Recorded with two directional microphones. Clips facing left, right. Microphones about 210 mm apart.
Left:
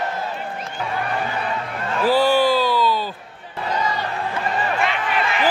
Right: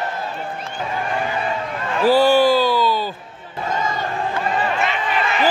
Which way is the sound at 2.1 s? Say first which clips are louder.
Right 3 dB; centre (ahead or behind).